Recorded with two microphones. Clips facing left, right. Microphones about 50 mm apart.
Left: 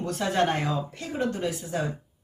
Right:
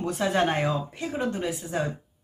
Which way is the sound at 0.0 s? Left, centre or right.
Centre.